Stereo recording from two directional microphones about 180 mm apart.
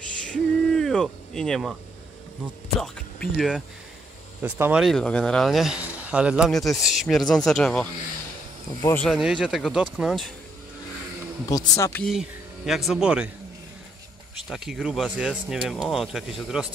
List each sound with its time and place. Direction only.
0.3 s a sound: 5° left (ahead or behind)
2.8 s speech: centre (ahead or behind)
4.4 s speech: 10° right (ahead or behind)
4.8 s speech: 5° left (ahead or behind)
9.0 s speech: centre (ahead or behind)
11.4 s speech: 20° left (ahead or behind)
12.1 s speech: centre (ahead or behind)
14.5 s speech: centre (ahead or behind)